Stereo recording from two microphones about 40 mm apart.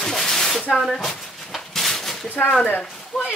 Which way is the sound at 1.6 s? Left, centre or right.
Centre.